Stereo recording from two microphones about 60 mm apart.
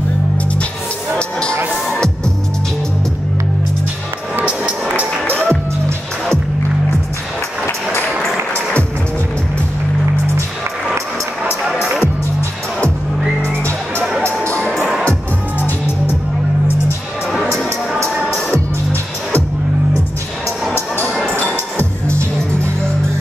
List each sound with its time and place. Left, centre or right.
1.1 s music: centre
4.8 s a sound: right
5.4 s music: right
11.6 s music: centre
13.4 s music: right
18.3 s music: left